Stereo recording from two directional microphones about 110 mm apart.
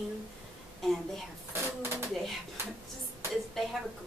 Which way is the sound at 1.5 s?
20° right (ahead or behind).